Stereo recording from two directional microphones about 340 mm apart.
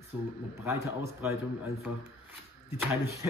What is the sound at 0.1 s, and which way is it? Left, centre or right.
A man's voice, centre.